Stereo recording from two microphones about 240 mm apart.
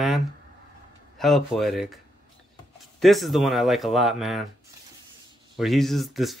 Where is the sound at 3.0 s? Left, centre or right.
Centre.